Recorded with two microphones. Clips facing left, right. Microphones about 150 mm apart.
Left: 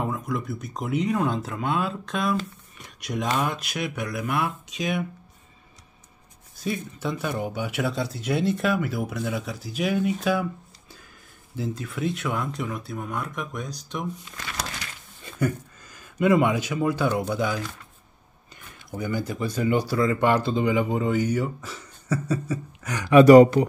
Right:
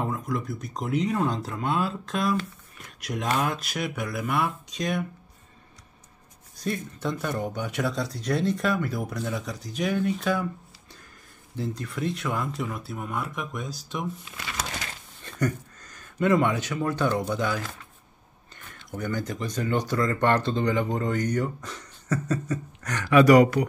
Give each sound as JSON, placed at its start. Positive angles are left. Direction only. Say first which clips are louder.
{"t": 0.0, "sound": "speech", "louder": "left 1 dB", "side_deg": 0}
{"t": 6.6, "sound": "speech", "louder": "left 1 dB", "side_deg": 5}
{"t": 11.5, "sound": "speech", "louder": "left 1 dB", "side_deg": 5}
{"t": 15.2, "sound": "speech", "louder": "left 1 dB", "side_deg": 10}
{"t": 18.9, "sound": "speech", "louder": "left 2 dB", "side_deg": 10}
{"t": 23.0, "sound": "speech", "louder": "left 5 dB", "side_deg": 25}